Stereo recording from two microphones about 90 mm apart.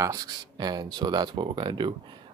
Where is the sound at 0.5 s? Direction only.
50° right (ahead or behind).